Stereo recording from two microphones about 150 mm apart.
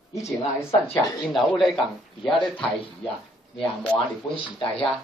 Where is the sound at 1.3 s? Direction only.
Centre (ahead or behind).